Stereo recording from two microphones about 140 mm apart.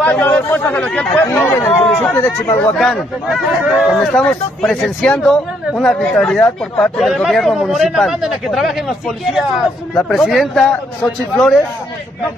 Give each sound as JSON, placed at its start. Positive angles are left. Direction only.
{"t": 0.0, "sound": "speech", "side_deg": 10}
{"t": 1.8, "sound": "chatter", "side_deg": 5}
{"t": 2.1, "sound": "speech", "side_deg": 15}
{"t": 2.8, "sound": "speech", "side_deg": 0}